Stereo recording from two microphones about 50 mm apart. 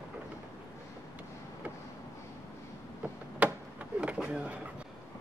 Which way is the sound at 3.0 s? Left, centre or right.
Right.